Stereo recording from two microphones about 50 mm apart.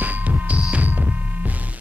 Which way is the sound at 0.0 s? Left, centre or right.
Right.